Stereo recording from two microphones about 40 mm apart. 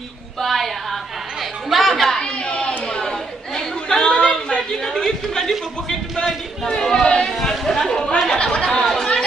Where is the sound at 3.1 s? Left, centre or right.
Centre.